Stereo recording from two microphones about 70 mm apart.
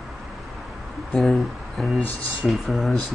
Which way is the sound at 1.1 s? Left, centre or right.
Centre.